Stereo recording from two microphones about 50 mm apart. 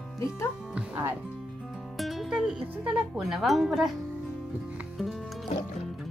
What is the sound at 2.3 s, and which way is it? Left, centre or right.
Speech, centre.